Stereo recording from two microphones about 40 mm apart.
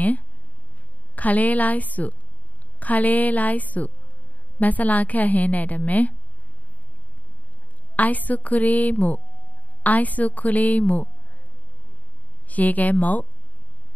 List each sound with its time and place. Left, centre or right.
1.1 s a woman's voice: left
7.9 s a woman's voice: left
12.4 s speech: left